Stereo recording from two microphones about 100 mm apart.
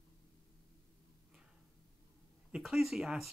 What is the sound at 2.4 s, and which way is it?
Speech, 5° right (ahead or behind).